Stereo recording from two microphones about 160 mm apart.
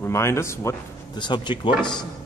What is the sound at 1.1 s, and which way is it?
Speech, 30° left (ahead or behind).